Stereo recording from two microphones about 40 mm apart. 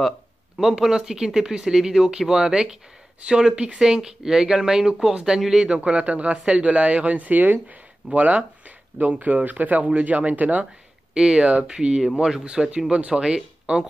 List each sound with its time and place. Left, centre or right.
0.6 s speech: centre; by 3.8 s right
3.8 s speech: centre
5.9 s speech: right
11.1 s speech: right
12.6 s speech: centre
12.9 s speech: right